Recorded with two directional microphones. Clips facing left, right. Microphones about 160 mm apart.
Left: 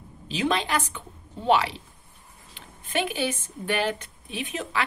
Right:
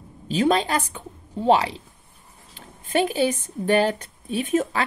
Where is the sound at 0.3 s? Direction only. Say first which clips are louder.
Right 5 dB; 40° right (ahead or behind).